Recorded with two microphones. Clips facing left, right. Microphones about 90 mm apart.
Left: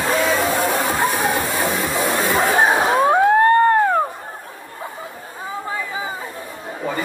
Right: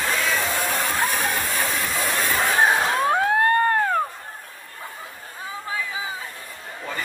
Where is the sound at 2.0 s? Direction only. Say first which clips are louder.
Left 5 dB; 50° left (ahead or behind).